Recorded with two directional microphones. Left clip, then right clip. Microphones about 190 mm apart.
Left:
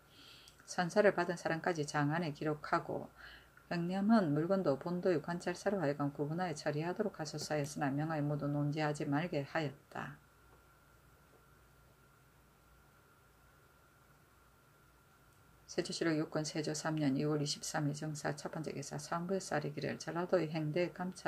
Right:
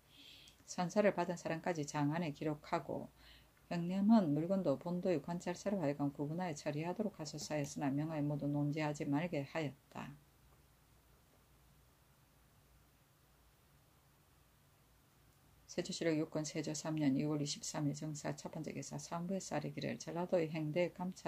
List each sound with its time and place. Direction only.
0.2 s speech: 5° right (ahead or behind)
15.6 s speech: 5° right (ahead or behind)